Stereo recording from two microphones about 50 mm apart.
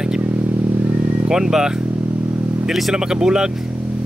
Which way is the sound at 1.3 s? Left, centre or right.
Centre.